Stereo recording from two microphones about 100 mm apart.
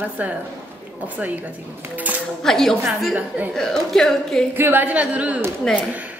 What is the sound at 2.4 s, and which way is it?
Speech, 5° left (ahead or behind).